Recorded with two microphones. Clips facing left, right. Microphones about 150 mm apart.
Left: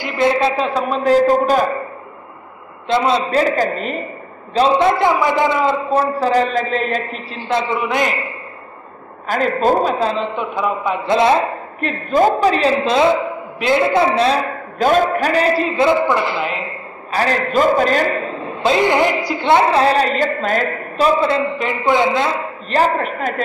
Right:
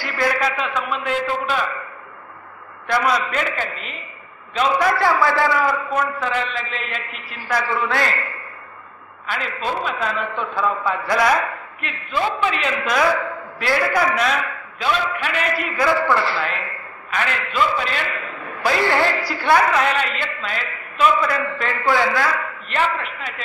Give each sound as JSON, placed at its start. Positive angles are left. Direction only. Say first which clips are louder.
{"t": 0.0, "sound": "a man's voice", "louder": "left 6 dB", "side_deg": 20}
{"t": 2.9, "sound": "a man's voice", "louder": "left 4 dB", "side_deg": 25}
{"t": 4.6, "sound": "a woman's voice", "louder": "left 5 dB", "side_deg": 25}
{"t": 7.3, "sound": "a woman's voice", "louder": "left 3 dB", "side_deg": 25}
{"t": 9.3, "sound": "a woman's voice", "louder": "left 10 dB", "side_deg": 45}
{"t": 17.1, "sound": "a man's voice", "louder": "left 7 dB", "side_deg": 35}
{"t": 22.7, "sound": "a man's voice", "louder": "left 7 dB", "side_deg": 40}